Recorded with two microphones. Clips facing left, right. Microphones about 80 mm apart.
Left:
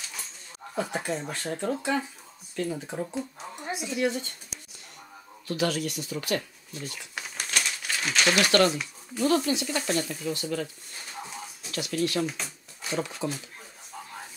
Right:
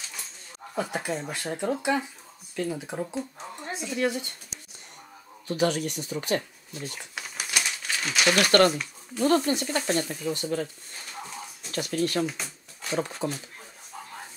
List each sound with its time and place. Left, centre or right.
0.7 s speech: centre
3.2 s a woman's voice: centre
5.7 s speech: right
6.1 s speech: right
7.2 s crumpling: centre
8.0 s speech: centre
8.5 s speech: right
11.7 s speech: right
12.3 s a sound: centre
13.0 s speech: right